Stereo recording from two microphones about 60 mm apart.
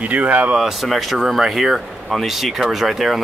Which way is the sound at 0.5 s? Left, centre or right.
Centre.